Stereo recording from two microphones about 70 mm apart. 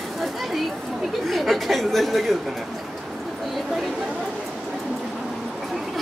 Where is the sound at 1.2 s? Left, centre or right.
Centre.